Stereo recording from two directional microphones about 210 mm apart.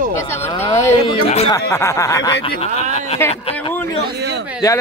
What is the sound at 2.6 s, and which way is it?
Speech, 30° left (ahead or behind).